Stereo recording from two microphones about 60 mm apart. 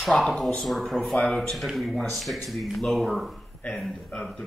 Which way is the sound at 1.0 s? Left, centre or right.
Centre.